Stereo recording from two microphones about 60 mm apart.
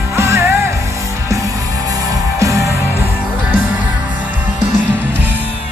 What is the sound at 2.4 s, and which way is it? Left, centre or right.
Music, right.